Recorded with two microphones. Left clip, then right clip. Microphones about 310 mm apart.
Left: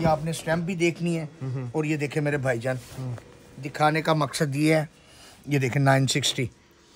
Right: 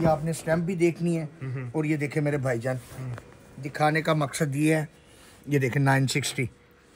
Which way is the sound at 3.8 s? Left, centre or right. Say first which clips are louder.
Left 2 dB; centre.